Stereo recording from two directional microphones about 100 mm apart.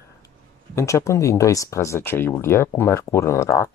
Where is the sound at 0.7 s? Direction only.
30° left (ahead or behind).